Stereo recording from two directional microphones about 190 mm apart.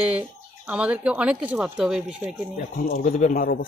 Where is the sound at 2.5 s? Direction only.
45° left (ahead or behind).